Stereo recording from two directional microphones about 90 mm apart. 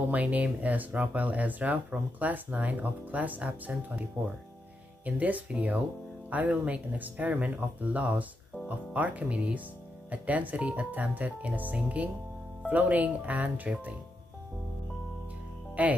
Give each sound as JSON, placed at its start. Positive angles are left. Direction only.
{"t": 0.1, "sound": "speech", "side_deg": -15}
{"t": 5.0, "sound": "speech", "side_deg": -20}
{"t": 15.7, "sound": "speech", "side_deg": -15}